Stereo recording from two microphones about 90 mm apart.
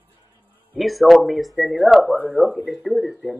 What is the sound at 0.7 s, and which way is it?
Speech, centre (ahead or behind).